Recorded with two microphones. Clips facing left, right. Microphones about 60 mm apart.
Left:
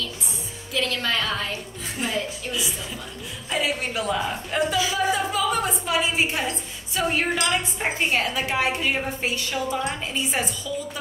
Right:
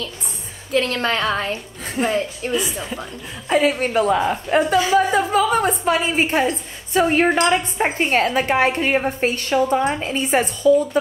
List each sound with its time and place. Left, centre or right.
0.7 s a woman's voice: right
9.8 s a woman's voice: right